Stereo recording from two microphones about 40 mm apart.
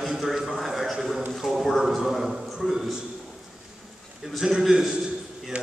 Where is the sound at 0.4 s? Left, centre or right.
Centre.